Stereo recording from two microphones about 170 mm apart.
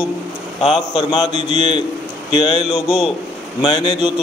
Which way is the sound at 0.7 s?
25° left (ahead or behind).